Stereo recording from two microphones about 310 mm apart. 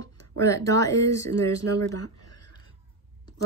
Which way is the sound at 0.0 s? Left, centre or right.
Centre.